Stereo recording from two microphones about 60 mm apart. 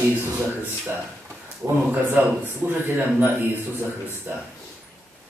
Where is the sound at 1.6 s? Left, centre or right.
Right.